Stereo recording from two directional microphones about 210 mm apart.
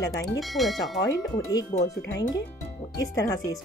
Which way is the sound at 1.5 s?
20° left (ahead or behind).